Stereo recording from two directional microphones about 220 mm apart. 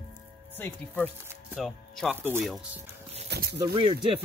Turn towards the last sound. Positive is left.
turn(degrees=-20)  # may be behind; listen again after turning